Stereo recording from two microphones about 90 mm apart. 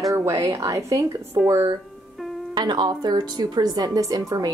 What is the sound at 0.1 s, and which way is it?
Speech, 35° right (ahead or behind).